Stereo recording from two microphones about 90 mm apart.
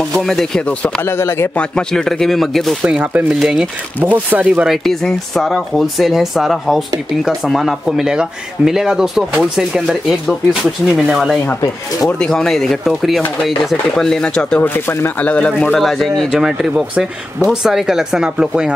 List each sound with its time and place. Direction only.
0.1 s speech: 5° left (ahead or behind)
1.0 s speech: 25° left (ahead or behind)
1.6 s speech: 10° left (ahead or behind); by 3.3 s 15° right (ahead or behind)
3.3 s speech: 5° right (ahead or behind)
4.0 s speech: 20° right (ahead or behind)
4.6 s speech: 5° left (ahead or behind)
12.2 s speech: 5° left (ahead or behind)
14.6 s speech: 25° left (ahead or behind)
15.8 s speech: centre (ahead or behind)